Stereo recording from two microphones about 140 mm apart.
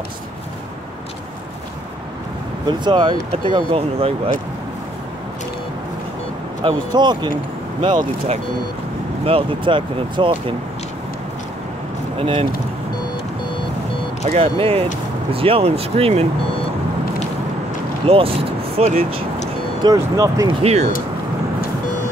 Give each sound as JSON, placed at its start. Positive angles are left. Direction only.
{"t": 2.8, "sound": "speech", "side_deg": -35}
{"t": 6.6, "sound": "speech", "side_deg": -30}
{"t": 9.2, "sound": "speech", "side_deg": -40}
{"t": 12.2, "sound": "speech", "side_deg": -45}
{"t": 14.2, "sound": "speech", "side_deg": -45}
{"t": 18.0, "sound": "speech", "side_deg": -40}
{"t": 19.8, "sound": "speech", "side_deg": -25}
{"t": 20.6, "sound": "speech", "side_deg": -50}